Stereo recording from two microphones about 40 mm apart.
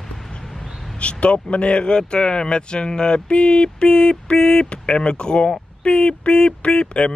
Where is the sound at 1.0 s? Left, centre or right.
Left.